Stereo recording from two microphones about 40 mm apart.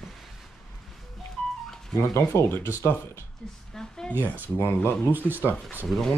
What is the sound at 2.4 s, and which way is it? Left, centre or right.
Speech, left.